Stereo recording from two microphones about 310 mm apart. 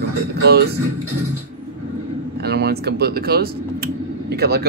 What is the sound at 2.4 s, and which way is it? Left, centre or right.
Speech, right.